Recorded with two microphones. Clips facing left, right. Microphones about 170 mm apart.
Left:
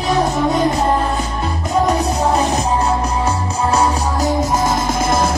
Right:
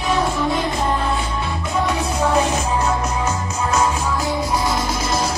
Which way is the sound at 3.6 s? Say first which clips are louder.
Left 3 dB; 35° left (ahead or behind).